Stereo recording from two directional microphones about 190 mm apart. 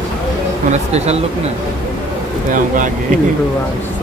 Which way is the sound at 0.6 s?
35° right (ahead or behind).